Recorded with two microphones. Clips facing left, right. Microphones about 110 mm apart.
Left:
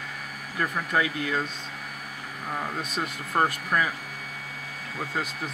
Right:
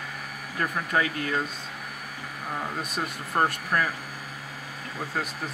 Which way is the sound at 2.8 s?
Centre (ahead or behind).